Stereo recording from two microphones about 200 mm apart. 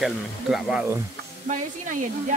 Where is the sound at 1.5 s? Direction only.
40° right (ahead or behind).